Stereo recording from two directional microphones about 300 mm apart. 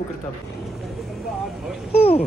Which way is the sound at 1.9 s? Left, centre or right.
Left.